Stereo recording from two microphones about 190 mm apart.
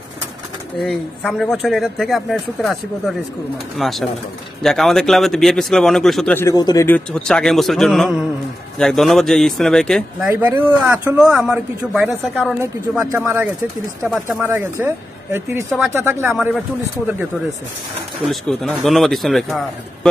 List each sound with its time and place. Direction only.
0.7 s speech: centre (ahead or behind)
6.4 s speech: 20° left (ahead or behind)
7.1 s speech: 5° left (ahead or behind)
18.2 s speech: centre (ahead or behind)